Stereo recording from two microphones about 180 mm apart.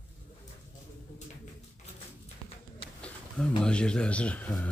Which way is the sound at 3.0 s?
5° left (ahead or behind).